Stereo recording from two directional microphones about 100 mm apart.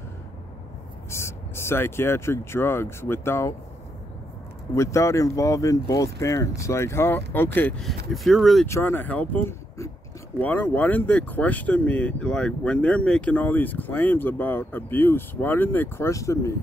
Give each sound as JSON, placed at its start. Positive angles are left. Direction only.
{"t": 1.1, "sound": "speech", "side_deg": 25}
{"t": 4.7, "sound": "speech", "side_deg": 30}
{"t": 7.8, "sound": "speech", "side_deg": 0}
{"t": 8.6, "sound": "speech", "side_deg": 25}
{"t": 16.1, "sound": "speech", "side_deg": 30}